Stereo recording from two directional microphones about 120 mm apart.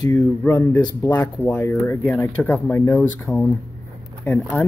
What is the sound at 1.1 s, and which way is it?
Speech, 15° left (ahead or behind).